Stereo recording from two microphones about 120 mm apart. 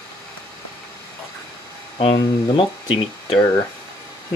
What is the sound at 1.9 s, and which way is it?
Speech, 50° left (ahead or behind).